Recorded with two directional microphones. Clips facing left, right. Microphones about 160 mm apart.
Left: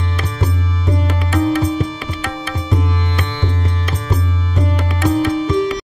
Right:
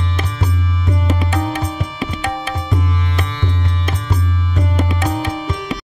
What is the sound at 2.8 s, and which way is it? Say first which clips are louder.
Music: left 1 dB; centre (ahead or behind).